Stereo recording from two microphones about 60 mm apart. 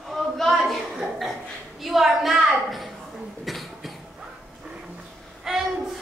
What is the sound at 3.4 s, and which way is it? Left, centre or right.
Cough, centre.